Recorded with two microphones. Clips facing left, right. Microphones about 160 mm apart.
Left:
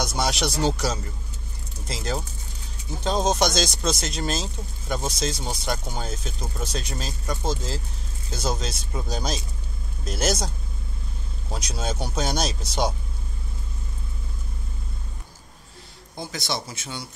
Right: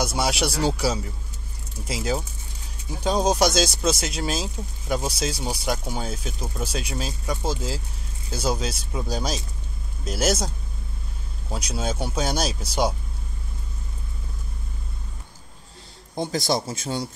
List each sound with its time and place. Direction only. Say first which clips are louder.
0.0 s speech: right 1 dB; 5° right (ahead or behind)
11.5 s speech: right 2 dB; 5° right (ahead or behind)
16.3 s a man's voice: right 6 dB; 40° right (ahead or behind)